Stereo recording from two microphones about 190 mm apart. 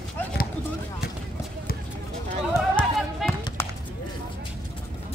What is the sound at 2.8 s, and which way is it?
Basketball bounce, 5° left (ahead or behind).